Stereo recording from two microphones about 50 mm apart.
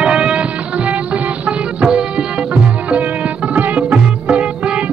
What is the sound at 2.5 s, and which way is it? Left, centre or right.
Music, right.